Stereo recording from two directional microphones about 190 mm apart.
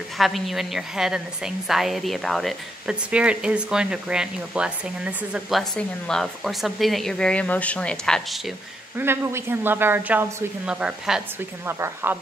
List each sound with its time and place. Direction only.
0.2 s a woman's voice: centre (ahead or behind)
8.9 s a woman's voice: 10° right (ahead or behind)